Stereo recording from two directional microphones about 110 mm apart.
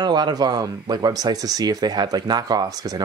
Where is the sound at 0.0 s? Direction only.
40° right (ahead or behind).